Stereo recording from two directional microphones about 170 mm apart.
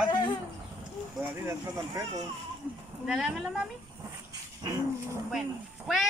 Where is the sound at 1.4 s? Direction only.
15° right (ahead or behind).